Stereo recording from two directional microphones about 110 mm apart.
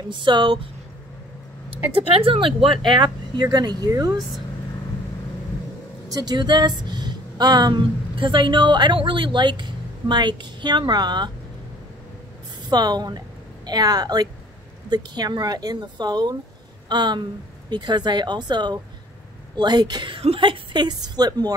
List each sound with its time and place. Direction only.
0.1 s a woman's voice: 45° right (ahead or behind)
2.1 s speech: 55° right (ahead or behind); by 4.2 s 35° right (ahead or behind)
6.0 s speech: 35° right (ahead or behind)
12.6 s a woman's voice: 40° right (ahead or behind)
20.2 s a woman's voice: 55° right (ahead or behind); by 21.5 s 35° right (ahead or behind)